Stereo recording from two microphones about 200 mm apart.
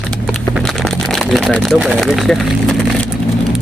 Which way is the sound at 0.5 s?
Centre (ahead or behind).